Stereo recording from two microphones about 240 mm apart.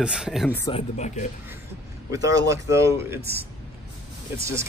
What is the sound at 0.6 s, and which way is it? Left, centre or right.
Speech, left.